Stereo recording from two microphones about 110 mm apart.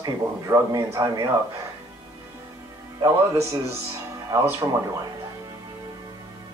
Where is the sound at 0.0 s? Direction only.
30° right (ahead or behind).